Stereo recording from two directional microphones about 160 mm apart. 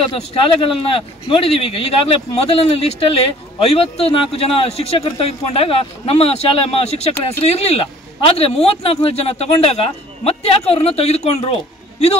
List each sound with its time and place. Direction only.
0.1 s speech: 40° left (ahead or behind)